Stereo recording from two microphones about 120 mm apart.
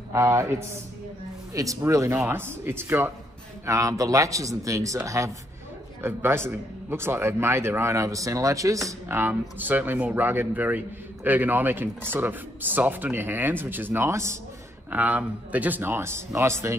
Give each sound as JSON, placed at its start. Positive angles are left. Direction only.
{"t": 0.1, "sound": "a man's voice", "side_deg": -25}
{"t": 14.9, "sound": "a man's voice", "side_deg": -15}